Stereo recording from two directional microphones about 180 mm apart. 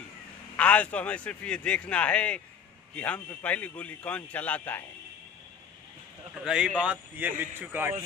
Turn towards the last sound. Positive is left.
turn(degrees=-10)  # may be behind; listen again after turning